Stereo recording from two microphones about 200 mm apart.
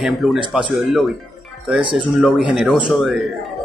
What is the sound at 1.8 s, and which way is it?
Speech, 25° right (ahead or behind).